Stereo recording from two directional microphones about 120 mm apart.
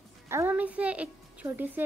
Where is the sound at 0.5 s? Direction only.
10° right (ahead or behind).